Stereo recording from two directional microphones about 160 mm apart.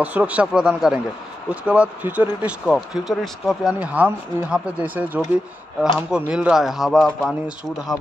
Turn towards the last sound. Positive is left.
turn(degrees=0)  # may be behind; listen again after turning